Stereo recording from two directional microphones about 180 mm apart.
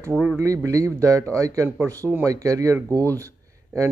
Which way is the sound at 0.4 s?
15° right (ahead or behind).